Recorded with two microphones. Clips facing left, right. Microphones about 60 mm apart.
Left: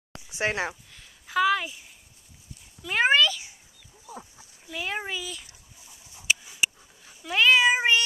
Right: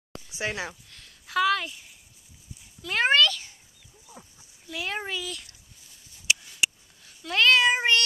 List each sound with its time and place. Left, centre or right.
0.1 s a sound: left
0.8 s a sound: centre
2.8 s a child's voice: centre
4.0 s dog: left
4.6 s a child's voice: centre
6.2 s cat: centre